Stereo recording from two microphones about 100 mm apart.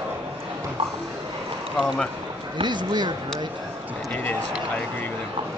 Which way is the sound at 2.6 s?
50° right (ahead or behind).